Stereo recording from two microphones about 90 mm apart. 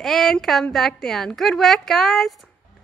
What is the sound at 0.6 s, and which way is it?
A woman's voice, 5° left (ahead or behind).